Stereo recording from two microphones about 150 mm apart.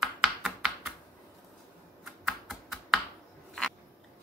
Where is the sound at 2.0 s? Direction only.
Centre (ahead or behind).